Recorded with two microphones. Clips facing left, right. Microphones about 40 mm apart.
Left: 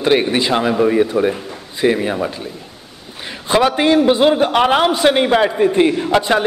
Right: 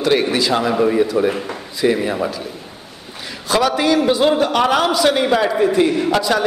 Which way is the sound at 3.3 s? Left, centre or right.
Left.